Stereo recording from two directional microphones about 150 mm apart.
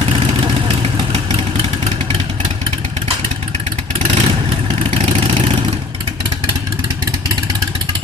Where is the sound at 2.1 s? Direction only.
40° right (ahead or behind).